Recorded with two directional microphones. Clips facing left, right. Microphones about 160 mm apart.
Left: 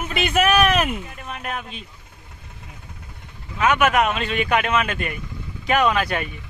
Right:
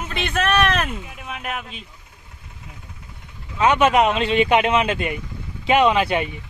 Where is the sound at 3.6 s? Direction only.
30° right (ahead or behind).